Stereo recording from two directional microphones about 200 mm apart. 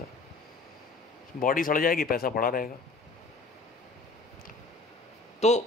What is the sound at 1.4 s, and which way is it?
A man's voice, 45° left (ahead or behind).